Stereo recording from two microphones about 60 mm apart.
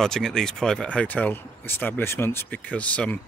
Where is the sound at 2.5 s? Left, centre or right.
Left.